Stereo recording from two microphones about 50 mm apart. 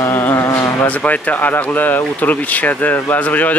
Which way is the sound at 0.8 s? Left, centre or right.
Left.